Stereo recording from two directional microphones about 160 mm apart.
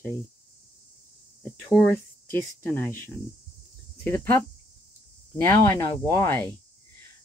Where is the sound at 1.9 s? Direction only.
15° left (ahead or behind).